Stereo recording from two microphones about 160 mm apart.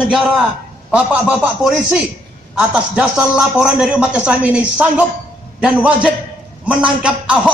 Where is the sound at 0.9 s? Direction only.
5° right (ahead or behind).